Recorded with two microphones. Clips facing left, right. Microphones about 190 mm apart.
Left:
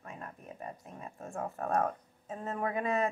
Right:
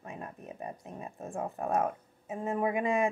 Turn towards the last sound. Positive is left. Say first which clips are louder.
# right 3 dB
turn(degrees=-15)  # may be behind; listen again after turning